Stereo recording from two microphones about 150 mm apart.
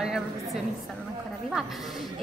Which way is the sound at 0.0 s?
5° right (ahead or behind).